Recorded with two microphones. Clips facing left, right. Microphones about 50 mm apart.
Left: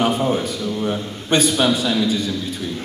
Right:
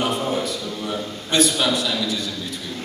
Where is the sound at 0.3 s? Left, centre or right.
Left.